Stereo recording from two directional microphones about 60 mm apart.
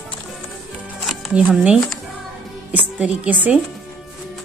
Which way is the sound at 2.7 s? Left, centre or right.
Right.